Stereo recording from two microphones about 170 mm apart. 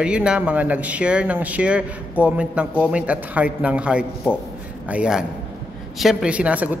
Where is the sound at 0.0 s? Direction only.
5° right (ahead or behind).